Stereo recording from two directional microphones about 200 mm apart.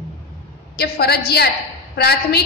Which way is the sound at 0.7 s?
50° left (ahead or behind).